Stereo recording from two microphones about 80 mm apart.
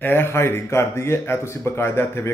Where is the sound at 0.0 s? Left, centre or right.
Left.